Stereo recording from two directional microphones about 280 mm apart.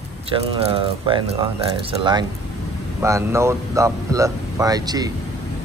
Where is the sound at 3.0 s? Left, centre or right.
Centre.